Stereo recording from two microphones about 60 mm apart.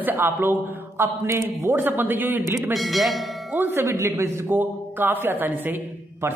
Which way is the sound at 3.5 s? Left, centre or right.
Right.